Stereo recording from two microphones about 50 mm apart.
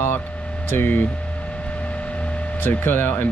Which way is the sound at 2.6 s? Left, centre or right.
Left.